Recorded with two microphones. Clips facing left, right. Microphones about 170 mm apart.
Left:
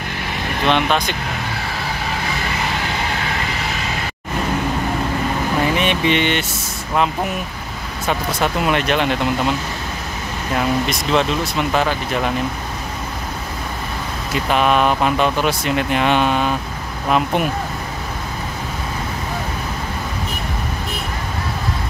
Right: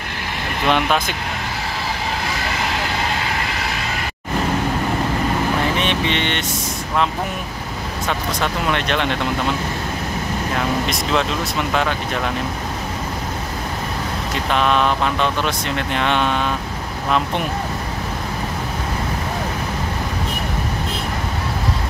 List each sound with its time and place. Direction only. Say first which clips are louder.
0.7 s speech: left 1 dB; 5° right (ahead or behind)
5.8 s vehicle: left 3 dB; 5° left (ahead or behind)
8.4 s speech: left 4 dB; 5° left (ahead or behind)
10.9 s speech: left 2 dB; centre (ahead or behind)
14.5 s speech: left 2 dB; 10° left (ahead or behind)